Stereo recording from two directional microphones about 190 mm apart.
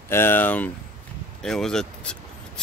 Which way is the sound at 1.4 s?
5° left (ahead or behind).